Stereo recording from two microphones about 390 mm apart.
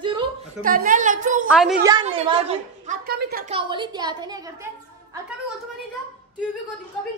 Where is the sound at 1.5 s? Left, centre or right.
Centre.